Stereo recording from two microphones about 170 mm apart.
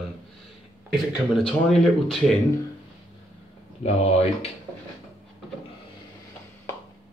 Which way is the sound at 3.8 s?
40° left (ahead or behind).